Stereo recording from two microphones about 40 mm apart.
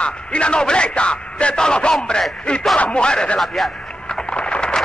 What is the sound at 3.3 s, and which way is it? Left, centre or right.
Speech, centre.